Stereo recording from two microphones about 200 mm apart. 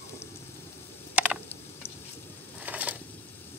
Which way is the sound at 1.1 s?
5° right (ahead or behind).